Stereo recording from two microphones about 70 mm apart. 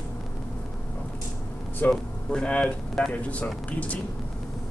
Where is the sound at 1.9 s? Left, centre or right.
Centre.